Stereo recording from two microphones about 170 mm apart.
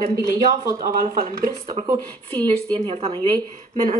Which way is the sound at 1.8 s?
35° right (ahead or behind).